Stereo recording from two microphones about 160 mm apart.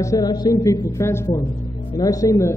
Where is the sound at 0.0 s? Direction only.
20° left (ahead or behind).